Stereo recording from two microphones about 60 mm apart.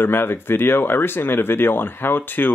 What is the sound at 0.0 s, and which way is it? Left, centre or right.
Speech, left.